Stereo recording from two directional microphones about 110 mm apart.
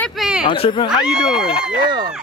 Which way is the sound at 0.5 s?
50° left (ahead or behind).